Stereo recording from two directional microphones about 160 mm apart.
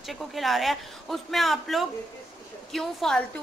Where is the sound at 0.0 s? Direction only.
Centre (ahead or behind).